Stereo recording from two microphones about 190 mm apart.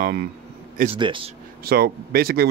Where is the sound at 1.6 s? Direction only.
50° right (ahead or behind).